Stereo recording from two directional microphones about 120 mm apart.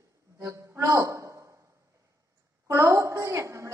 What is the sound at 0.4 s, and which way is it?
Music, 25° right (ahead or behind).